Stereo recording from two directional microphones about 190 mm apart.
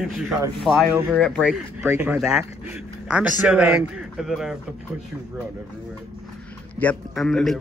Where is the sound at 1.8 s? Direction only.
10° right (ahead or behind).